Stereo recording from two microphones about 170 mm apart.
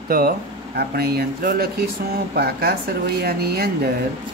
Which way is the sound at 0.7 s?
70° right (ahead or behind).